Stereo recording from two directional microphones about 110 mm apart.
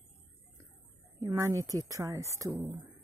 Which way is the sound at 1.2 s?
30° right (ahead or behind).